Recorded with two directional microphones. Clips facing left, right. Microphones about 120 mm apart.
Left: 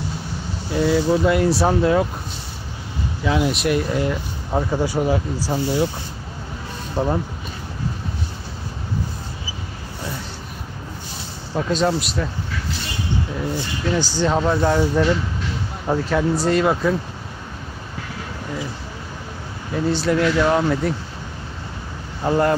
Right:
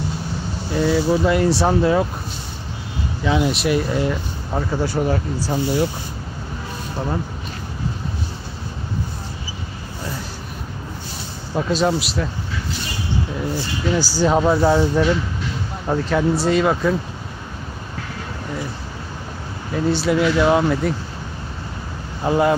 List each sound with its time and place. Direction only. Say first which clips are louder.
0.7 s speech: even; centre (ahead or behind)
3.3 s speech: right 1 dB; centre (ahead or behind)
4.5 s speech: left 1 dB; 15° left (ahead or behind)
7.0 s speech: left 5 dB; 30° left (ahead or behind)
11.5 s speech: right 1 dB; 5° right (ahead or behind)
13.8 s speech: right 2 dB; 5° right (ahead or behind)
19.7 s speech: right 1 dB; centre (ahead or behind)
22.2 s speech: right 1 dB; 5° right (ahead or behind)